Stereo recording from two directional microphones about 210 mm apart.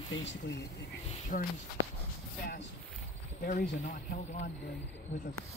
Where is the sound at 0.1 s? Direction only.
60° left (ahead or behind).